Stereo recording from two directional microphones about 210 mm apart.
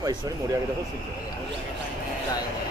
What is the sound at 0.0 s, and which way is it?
Speech, 20° right (ahead or behind).